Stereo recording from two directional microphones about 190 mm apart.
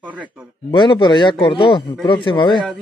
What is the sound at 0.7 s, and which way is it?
Speech, 25° left (ahead or behind).